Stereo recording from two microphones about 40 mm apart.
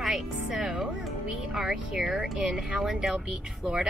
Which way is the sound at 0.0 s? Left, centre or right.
Centre.